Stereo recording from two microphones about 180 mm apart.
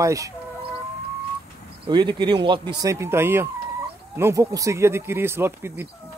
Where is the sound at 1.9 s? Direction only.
25° right (ahead or behind).